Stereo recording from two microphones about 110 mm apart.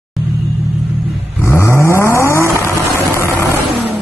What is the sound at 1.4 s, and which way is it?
Vehicle, 25° left (ahead or behind).